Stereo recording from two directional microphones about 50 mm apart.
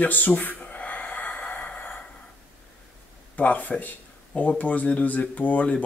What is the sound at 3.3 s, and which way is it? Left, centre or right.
Speech, left.